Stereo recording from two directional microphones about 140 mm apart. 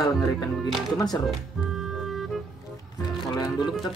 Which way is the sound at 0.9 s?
30° left (ahead or behind).